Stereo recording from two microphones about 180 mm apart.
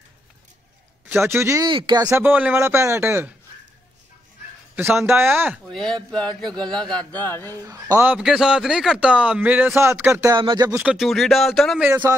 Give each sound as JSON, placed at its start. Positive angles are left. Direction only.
{"t": 1.0, "sound": "a man's voice", "side_deg": -10}
{"t": 1.7, "sound": "a man's voice", "side_deg": -25}
{"t": 5.0, "sound": "a man's voice", "side_deg": -10}
{"t": 5.7, "sound": "speech", "side_deg": 5}
{"t": 7.6, "sound": "a man's voice", "side_deg": -15}
{"t": 10.8, "sound": "speech", "side_deg": 0}